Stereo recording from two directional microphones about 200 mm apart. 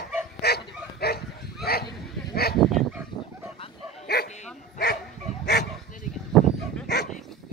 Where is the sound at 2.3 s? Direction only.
50° left (ahead or behind).